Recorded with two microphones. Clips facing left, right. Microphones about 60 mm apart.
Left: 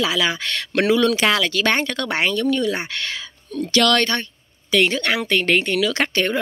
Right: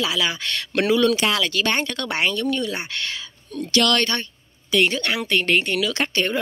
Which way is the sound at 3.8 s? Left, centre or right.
Left.